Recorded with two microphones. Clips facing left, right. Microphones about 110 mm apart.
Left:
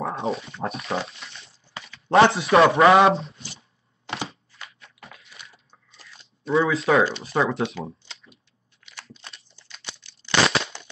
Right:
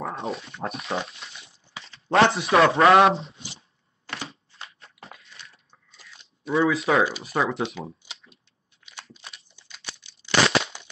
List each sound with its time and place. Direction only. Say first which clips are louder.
0.0 s a man's voice: left 4 dB; centre (ahead or behind)
4.0 s crushing: left 4 dB; 25° left (ahead or behind)
4.7 s biting: even; 30° right (ahead or behind)
5.1 s a sound: even; centre (ahead or behind)
7.1 s a man's voice: left 2 dB; 5° right (ahead or behind)
9.0 s crunch: left 2 dB; 5° right (ahead or behind)
9.6 s typing: even; 15° right (ahead or behind)